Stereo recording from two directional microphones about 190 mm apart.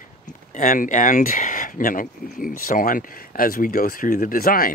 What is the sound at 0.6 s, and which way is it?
Speech, 45° left (ahead or behind).